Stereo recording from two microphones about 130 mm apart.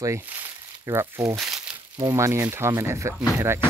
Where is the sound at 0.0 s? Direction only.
20° right (ahead or behind).